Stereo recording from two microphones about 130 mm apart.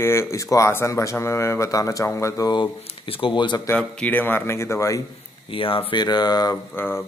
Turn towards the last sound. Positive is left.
turn(degrees=15)  # may be behind; listen again after turning